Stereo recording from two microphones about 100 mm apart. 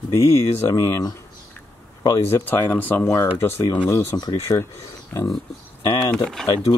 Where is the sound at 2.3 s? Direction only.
20° left (ahead or behind).